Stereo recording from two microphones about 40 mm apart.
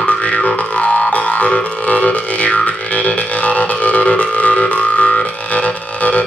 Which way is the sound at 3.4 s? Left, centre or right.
Left.